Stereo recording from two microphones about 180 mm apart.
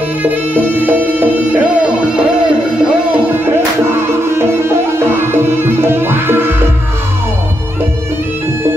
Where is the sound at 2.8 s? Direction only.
10° right (ahead or behind).